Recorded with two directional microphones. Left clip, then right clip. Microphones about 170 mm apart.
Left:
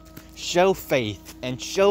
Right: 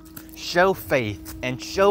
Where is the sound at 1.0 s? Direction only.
Centre (ahead or behind).